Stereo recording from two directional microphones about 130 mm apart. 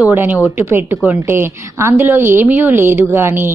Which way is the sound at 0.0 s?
15° right (ahead or behind).